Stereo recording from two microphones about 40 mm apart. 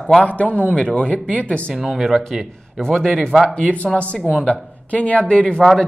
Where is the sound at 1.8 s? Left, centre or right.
Centre.